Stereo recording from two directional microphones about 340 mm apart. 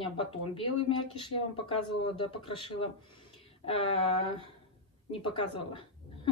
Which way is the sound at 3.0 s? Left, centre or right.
Centre.